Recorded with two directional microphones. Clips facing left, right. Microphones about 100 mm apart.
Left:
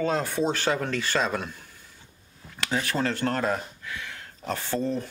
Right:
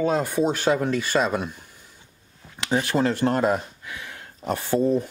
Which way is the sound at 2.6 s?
20° right (ahead or behind).